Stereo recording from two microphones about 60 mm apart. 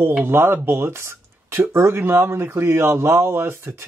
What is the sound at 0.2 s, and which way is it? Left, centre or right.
Speech, right.